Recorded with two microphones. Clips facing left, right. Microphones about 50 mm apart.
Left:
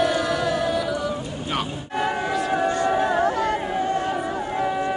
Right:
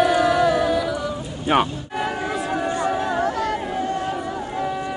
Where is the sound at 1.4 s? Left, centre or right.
Right.